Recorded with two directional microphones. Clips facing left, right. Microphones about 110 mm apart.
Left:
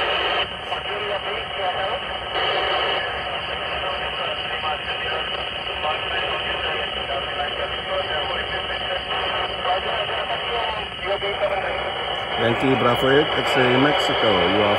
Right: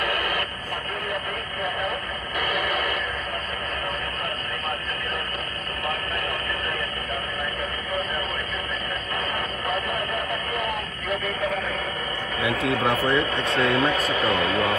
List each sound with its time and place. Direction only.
0.0 s radio: 45° left (ahead or behind)
2.3 s a sound: 45° left (ahead or behind)
12.4 s speech: 35° left (ahead or behind)